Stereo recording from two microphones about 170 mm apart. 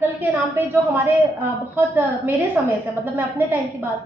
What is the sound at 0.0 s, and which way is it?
A woman's voice, 10° right (ahead or behind).